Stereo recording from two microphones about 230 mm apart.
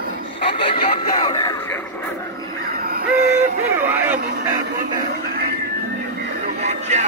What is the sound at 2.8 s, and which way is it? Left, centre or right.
Music, right.